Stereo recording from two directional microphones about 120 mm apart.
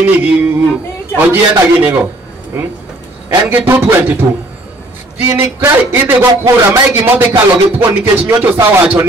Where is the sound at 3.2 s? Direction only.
15° right (ahead or behind).